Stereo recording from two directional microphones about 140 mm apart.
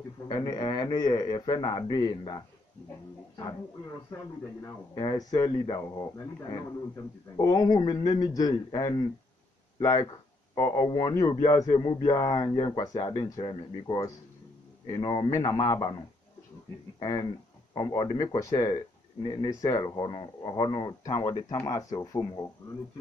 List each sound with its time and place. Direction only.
0.3 s a man's voice: 30° left (ahead or behind)
4.9 s a man's voice: 30° left (ahead or behind)
7.3 s a man's voice: 25° left (ahead or behind)
17.0 s a man's voice: 30° left (ahead or behind)